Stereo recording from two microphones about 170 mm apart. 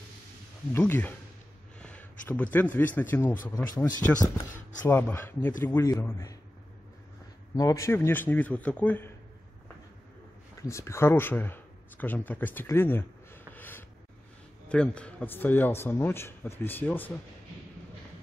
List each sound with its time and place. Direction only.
0.7 s a man's voice: 10° left (ahead or behind)
1.8 s a sound: 5° left (ahead or behind)
3.0 s a man's voice: 15° left (ahead or behind)
7.5 s a man's voice: 20° left (ahead or behind)
10.6 s a man's voice: 15° left (ahead or behind)